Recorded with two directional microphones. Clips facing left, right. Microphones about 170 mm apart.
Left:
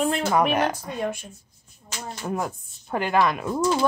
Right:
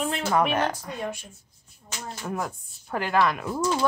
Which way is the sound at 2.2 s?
25° left (ahead or behind).